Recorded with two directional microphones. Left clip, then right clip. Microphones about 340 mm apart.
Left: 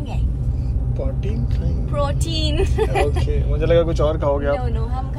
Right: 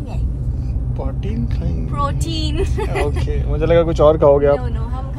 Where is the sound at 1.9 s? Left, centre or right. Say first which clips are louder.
Right 1 dB; centre.